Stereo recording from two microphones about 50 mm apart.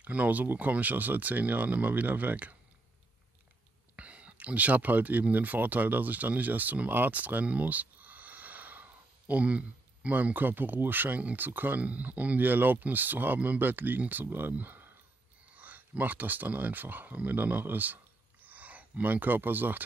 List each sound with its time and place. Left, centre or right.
0.0 s speech: right
3.9 s speech: right